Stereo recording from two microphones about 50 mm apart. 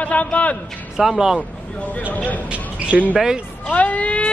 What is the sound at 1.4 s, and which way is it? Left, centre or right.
Speech, left.